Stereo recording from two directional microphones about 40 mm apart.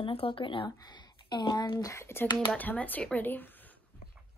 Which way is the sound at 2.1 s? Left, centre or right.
Left.